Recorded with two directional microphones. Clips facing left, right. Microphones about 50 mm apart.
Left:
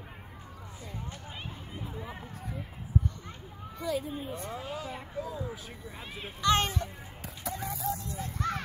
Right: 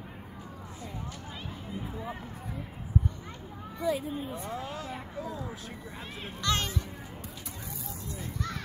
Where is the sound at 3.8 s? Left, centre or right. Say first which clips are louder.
Right 2 dB; centre.